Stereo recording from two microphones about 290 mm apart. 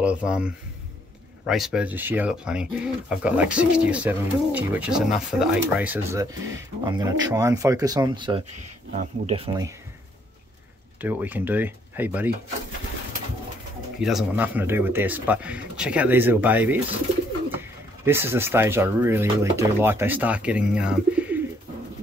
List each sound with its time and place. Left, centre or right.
0.0 s speech: centre
11.0 s speech: centre
14.0 s speech: centre